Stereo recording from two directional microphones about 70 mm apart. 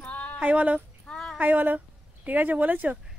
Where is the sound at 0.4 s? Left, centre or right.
Right.